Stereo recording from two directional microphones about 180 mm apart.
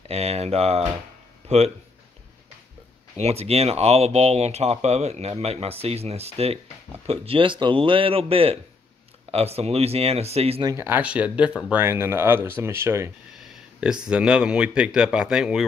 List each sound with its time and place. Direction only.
0.1 s speech: 35° right (ahead or behind)
1.4 s music: 35° right (ahead or behind)
3.2 s speech: 35° right (ahead or behind)
10.7 s speech: 10° right (ahead or behind)
13.7 s speech: 5° right (ahead or behind)